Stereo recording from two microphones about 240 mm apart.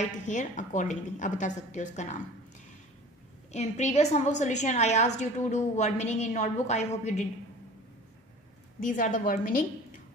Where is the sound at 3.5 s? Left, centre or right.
Left.